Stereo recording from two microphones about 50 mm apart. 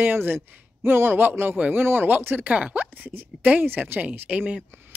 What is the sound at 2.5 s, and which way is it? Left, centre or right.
Speech, right.